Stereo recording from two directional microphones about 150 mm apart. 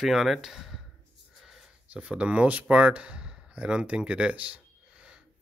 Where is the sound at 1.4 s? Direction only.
Centre (ahead or behind).